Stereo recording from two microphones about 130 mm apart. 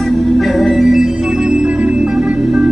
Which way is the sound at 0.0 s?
Centre (ahead or behind).